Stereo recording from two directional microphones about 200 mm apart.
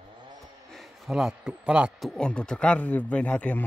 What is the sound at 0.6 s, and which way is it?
Speech, centre (ahead or behind).